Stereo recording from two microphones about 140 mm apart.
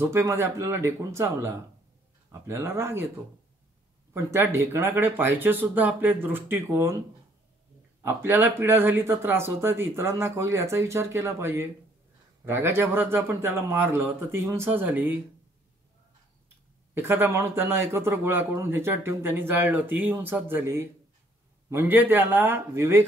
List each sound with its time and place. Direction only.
0.0 s a man's voice: 20° right (ahead or behind)
4.1 s a man's voice: 15° right (ahead or behind)
8.0 s a man's voice: 15° right (ahead or behind)
16.9 s a man's voice: 15° right (ahead or behind)